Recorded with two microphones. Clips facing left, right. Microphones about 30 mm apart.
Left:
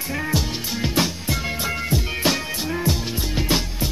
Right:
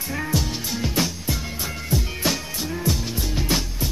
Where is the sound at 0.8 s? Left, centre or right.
Left.